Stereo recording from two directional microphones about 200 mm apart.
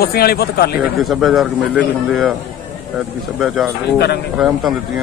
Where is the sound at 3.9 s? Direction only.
55° left (ahead or behind).